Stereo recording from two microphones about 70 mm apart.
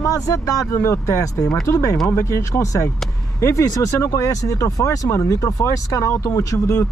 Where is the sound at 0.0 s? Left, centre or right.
Left.